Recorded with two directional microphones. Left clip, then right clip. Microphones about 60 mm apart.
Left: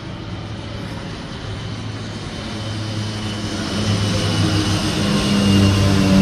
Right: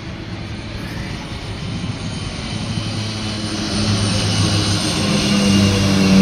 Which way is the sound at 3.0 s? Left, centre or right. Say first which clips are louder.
Right 2 dB; left.